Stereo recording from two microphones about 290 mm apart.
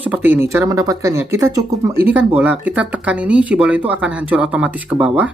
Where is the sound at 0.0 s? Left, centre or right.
Centre.